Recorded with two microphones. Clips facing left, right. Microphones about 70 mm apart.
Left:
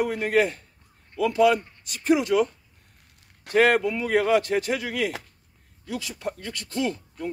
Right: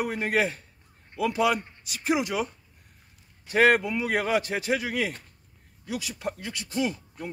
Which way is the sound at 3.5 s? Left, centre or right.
Centre.